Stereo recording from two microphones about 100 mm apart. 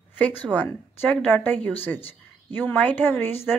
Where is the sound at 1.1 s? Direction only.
15° left (ahead or behind).